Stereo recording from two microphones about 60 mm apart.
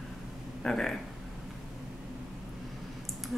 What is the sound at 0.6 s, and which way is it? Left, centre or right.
Speech, centre.